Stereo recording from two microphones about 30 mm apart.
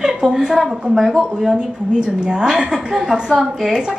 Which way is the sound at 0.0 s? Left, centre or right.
Centre.